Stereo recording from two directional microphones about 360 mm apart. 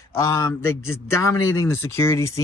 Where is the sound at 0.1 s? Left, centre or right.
Centre.